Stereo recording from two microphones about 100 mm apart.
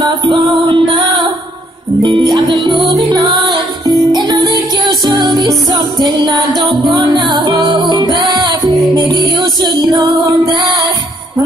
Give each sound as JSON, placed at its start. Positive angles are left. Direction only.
{"t": 0.3, "sound": "music", "side_deg": -55}
{"t": 2.2, "sound": "music", "side_deg": -50}
{"t": 4.1, "sound": "music", "side_deg": -45}